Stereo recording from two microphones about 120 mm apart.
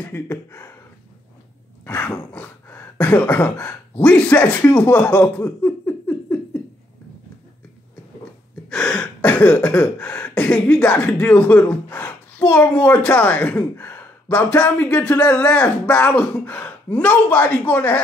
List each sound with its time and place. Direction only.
0.0 s speech: 15° left (ahead or behind)
1.9 s throat clearing: 10° left (ahead or behind)
2.3 s speech: 15° left (ahead or behind)
5.6 s a sound: 15° left (ahead or behind)
8.6 s throat clearing: 5° left (ahead or behind)